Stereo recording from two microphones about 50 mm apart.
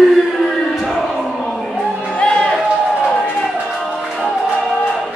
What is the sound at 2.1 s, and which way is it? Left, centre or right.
Music, centre.